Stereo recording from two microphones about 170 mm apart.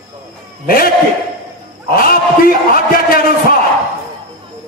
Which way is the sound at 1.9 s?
60° left (ahead or behind).